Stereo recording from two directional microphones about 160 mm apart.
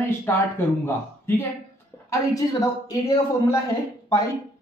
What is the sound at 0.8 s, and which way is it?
Speech, 15° left (ahead or behind).